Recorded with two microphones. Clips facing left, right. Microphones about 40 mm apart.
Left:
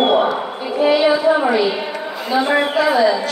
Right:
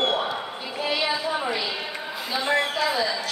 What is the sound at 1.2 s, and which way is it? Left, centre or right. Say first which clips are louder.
A man's voice: left 12 dB; left.